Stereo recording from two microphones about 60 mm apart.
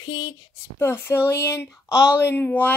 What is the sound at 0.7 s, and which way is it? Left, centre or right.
Speech, left.